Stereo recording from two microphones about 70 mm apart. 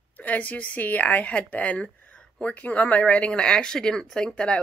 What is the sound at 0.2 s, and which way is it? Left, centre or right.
Speech, left.